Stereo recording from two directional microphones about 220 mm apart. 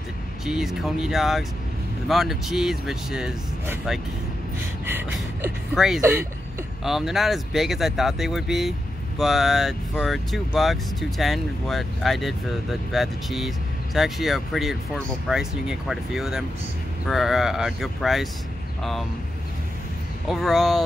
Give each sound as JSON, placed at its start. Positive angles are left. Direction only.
{"t": 0.5, "sound": "speech", "side_deg": 0}
{"t": 20.2, "sound": "speech", "side_deg": 0}